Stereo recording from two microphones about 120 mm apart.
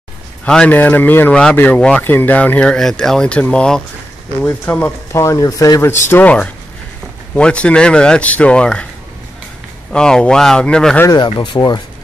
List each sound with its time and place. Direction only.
0.5 s speech: 10° left (ahead or behind)
9.9 s speech: 5° left (ahead or behind)
11.2 s speech: 40° left (ahead or behind)